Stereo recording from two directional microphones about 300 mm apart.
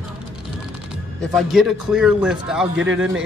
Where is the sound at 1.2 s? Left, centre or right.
Centre.